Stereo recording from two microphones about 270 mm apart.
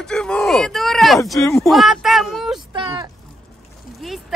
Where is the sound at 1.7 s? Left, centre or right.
Centre.